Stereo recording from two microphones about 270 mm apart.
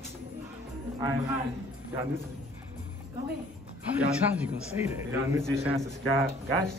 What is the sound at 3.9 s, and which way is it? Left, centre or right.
A man's voice, centre.